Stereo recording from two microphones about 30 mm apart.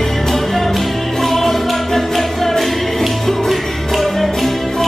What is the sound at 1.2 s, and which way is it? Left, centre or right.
Music, centre.